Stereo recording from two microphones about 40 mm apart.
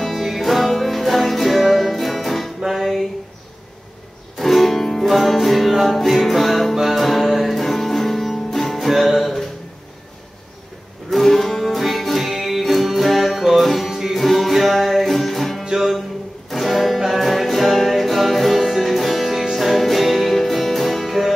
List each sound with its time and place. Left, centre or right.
0.0 s music: centre
4.4 s music: centre
11.2 s music: centre
15.6 s music: centre
16.4 s music: centre